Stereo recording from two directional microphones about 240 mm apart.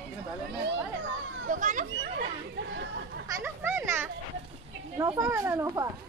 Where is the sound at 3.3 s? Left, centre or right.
Centre.